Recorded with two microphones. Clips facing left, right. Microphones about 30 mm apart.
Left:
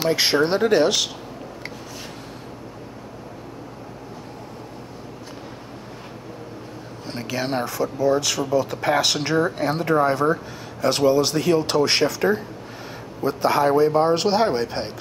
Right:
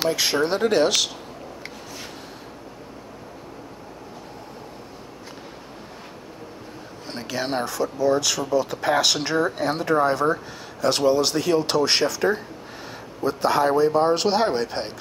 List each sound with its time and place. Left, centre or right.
0.1 s speech: left
0.7 s speech: centre
7.1 s speech: centre
8.3 s speech: centre
12.0 s speech: centre